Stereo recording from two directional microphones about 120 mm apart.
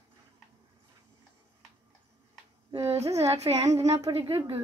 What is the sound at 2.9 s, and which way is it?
Child singing, 60° right (ahead or behind).